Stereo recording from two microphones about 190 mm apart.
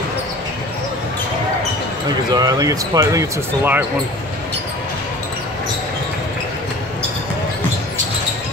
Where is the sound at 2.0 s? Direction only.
20° right (ahead or behind).